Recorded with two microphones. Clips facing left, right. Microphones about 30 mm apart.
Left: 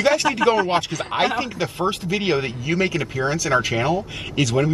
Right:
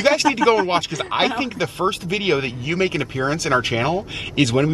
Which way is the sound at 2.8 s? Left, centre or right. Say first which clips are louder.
Right 2 dB; right.